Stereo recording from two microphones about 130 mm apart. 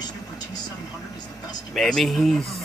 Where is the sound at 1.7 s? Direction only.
Centre (ahead or behind).